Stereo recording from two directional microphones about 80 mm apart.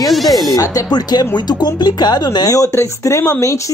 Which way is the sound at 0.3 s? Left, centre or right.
Left.